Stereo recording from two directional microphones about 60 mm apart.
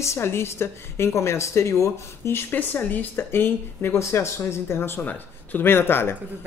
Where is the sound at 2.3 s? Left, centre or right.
Left.